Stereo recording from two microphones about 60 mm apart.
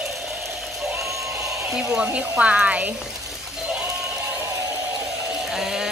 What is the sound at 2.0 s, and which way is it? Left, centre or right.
Speech, right.